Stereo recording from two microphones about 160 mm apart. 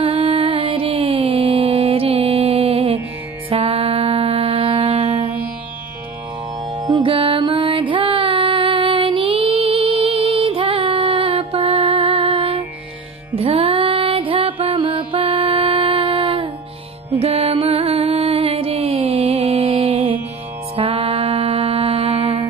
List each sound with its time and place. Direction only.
0.0 s music: 35° right (ahead or behind)
6.7 s music: 30° right (ahead or behind)